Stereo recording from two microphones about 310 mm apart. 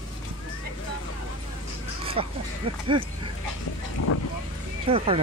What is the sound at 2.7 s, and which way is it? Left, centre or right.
Speech, centre.